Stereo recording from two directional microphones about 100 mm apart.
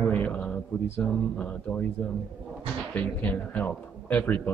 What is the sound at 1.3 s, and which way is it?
Speech, 15° left (ahead or behind).